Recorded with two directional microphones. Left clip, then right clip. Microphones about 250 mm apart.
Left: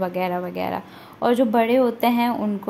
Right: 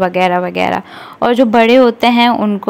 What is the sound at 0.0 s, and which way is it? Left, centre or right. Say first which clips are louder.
Speech: right 12 dB; right.